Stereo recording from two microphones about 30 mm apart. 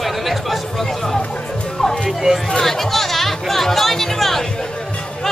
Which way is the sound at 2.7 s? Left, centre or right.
Centre.